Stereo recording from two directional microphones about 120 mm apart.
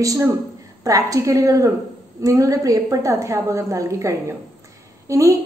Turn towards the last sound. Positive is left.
turn(degrees=-25)  # may be behind; listen again after turning